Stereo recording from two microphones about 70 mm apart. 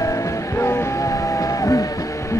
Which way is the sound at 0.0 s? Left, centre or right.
Left.